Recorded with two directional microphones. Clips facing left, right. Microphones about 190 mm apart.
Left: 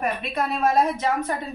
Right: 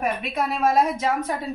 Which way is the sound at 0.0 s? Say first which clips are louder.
Right 1 dB; 5° right (ahead or behind).